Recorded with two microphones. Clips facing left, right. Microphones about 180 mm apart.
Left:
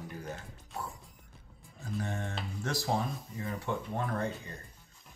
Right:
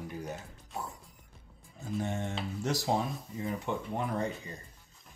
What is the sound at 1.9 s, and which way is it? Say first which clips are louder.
Speech: right 3 dB; 20° right (ahead or behind).